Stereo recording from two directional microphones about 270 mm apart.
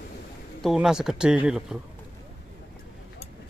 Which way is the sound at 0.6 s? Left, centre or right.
Centre.